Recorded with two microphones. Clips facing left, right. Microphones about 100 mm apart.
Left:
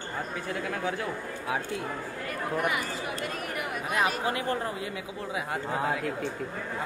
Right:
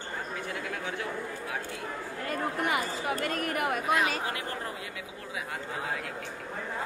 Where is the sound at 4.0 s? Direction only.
25° left (ahead or behind).